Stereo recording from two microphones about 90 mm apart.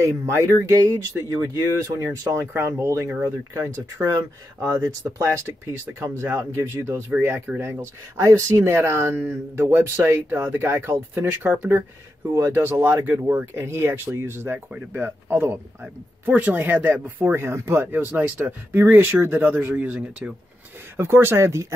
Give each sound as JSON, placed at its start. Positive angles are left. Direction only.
{"t": 0.3, "sound": "speech", "side_deg": -30}
{"t": 20.9, "sound": "speech", "side_deg": -25}